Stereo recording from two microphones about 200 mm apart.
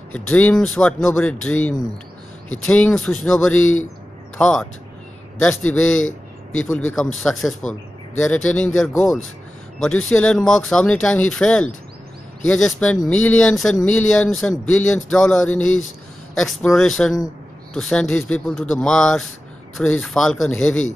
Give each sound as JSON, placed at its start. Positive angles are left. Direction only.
{"t": 0.1, "sound": "speech", "side_deg": 5}
{"t": 5.7, "sound": "speech", "side_deg": 5}
{"t": 6.0, "sound": "a sound", "side_deg": 85}
{"t": 7.2, "sound": "speech", "side_deg": 0}